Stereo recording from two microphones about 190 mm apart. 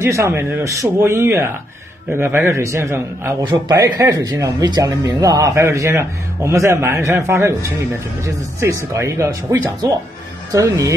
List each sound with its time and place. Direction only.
0.0 s a man's voice: 15° right (ahead or behind)
8.5 s a man's voice: 15° right (ahead or behind)